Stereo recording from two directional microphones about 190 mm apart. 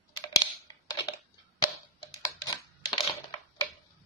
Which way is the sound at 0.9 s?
25° left (ahead or behind).